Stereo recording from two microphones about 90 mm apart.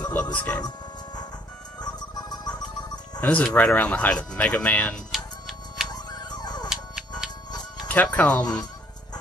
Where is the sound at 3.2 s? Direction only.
15° left (ahead or behind).